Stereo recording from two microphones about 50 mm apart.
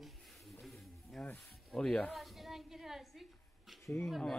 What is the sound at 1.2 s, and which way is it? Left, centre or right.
Speech, centre.